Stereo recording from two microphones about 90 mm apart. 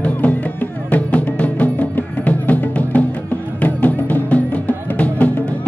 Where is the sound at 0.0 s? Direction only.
20° left (ahead or behind).